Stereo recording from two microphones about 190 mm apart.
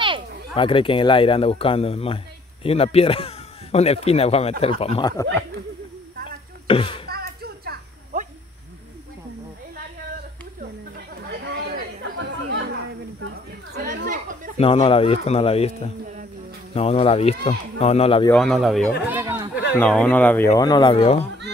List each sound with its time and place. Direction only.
0.6 s speech: 25° left (ahead or behind)
5.1 s speech: 15° left (ahead or behind)
6.2 s a sound: 30° left (ahead or behind)
7.1 s a sound: 55° right (ahead or behind)
11.4 s chatter: 70° right (ahead or behind)
13.7 s chatter: 45° right (ahead or behind)
14.6 s speech: 30° left (ahead or behind)
18.3 s speech: centre (ahead or behind)
19.0 s chatter: 10° right (ahead or behind)
19.8 s speech: 5° left (ahead or behind); by 21.2 s 30° left (ahead or behind)